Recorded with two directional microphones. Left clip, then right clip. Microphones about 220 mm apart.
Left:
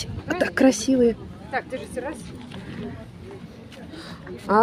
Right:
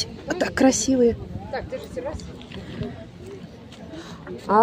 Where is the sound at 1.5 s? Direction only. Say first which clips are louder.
Left 2 dB; 35° left (ahead or behind).